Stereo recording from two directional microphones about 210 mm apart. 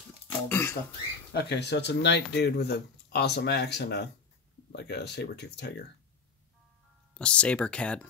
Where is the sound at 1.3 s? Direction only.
55° left (ahead or behind).